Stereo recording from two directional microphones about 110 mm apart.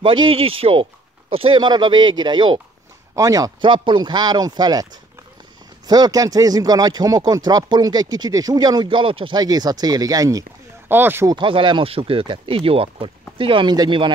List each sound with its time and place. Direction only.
0.0 s speech: 55° right (ahead or behind)
3.2 s speech: 30° right (ahead or behind)
3.6 s speech: 45° right (ahead or behind)
5.9 s speech: 40° right (ahead or behind); by 9.4 s 55° right (ahead or behind)
9.4 s speech: 35° right (ahead or behind)
10.9 s speech: 20° right (ahead or behind)
11.2 s speech: 50° right (ahead or behind)